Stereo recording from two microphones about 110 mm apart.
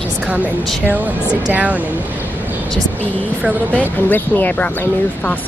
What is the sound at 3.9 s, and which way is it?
Speech, 15° left (ahead or behind).